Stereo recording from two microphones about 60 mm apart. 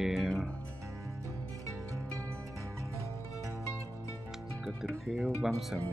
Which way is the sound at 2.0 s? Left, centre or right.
Right.